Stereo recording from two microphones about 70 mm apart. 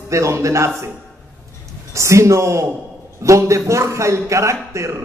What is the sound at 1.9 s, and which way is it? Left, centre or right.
A man's voice, right.